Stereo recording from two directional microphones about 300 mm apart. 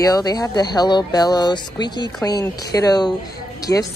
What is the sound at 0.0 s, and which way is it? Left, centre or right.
Speech, centre.